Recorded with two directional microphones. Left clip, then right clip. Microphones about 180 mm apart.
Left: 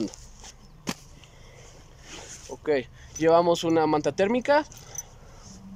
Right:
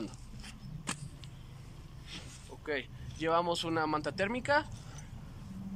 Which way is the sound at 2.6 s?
30° left (ahead or behind).